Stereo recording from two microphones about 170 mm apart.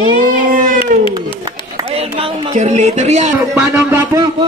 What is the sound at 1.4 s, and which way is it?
A woman's voice, 35° right (ahead or behind).